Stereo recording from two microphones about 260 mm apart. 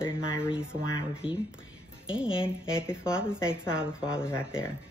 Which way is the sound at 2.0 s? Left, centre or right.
Centre.